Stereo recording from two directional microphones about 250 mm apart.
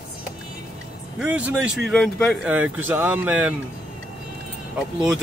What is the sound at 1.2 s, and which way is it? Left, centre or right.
Speech, centre.